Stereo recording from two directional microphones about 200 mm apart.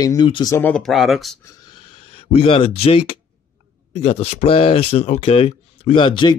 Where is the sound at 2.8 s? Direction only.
30° left (ahead or behind).